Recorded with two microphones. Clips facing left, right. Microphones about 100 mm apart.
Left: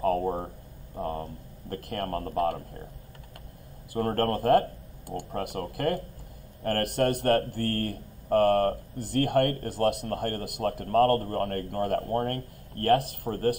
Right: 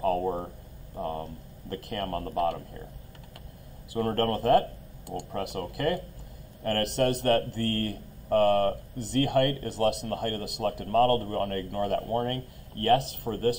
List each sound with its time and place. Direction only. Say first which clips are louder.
0.0 s a sound: left 1 dB; 40° left (ahead or behind)
0.9 s speech: even; 35° left (ahead or behind)
3.9 s speech: even; 45° left (ahead or behind)